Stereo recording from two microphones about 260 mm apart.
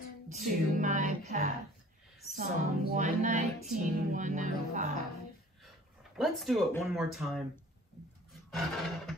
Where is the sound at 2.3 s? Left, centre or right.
Right.